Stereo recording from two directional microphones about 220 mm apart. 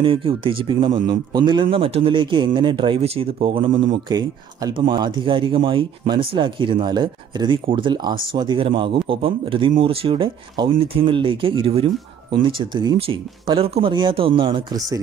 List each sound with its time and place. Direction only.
0.0 s a man's voice: 25° right (ahead or behind)